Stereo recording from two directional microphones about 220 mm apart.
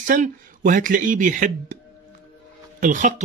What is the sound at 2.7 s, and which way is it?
Speech, 35° right (ahead or behind).